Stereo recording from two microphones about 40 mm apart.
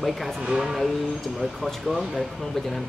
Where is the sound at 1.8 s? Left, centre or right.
Centre.